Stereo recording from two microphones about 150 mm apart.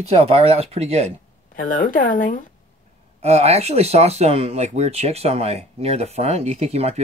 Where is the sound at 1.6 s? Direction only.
65° left (ahead or behind).